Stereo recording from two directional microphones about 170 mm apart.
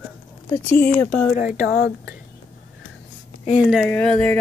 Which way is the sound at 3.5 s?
Centre (ahead or behind).